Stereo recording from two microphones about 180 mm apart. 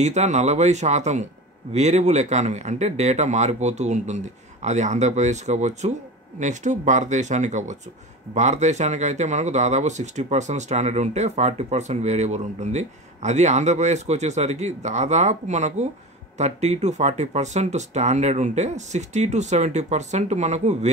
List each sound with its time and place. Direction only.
0.0 s speech: 40° right (ahead or behind)